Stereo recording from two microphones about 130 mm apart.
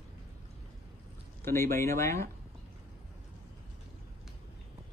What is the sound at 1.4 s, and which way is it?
Speech, 20° left (ahead or behind).